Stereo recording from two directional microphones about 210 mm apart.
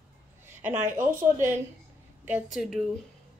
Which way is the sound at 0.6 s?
10° right (ahead or behind).